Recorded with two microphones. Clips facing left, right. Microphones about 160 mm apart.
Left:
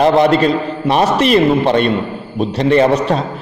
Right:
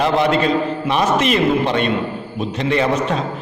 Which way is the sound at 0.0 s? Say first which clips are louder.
Left 5 dB; 40° left (ahead or behind).